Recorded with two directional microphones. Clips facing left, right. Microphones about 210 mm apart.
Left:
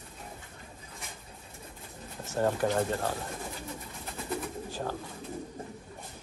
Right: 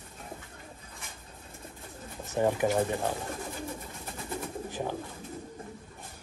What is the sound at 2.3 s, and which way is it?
Speech, 10° right (ahead or behind).